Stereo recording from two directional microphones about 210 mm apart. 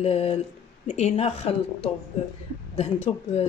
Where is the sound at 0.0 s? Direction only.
30° left (ahead or behind).